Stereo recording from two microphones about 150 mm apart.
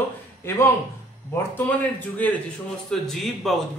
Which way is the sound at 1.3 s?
15° left (ahead or behind).